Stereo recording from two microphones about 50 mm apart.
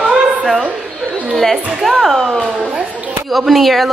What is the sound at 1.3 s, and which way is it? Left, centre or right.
Speech, centre.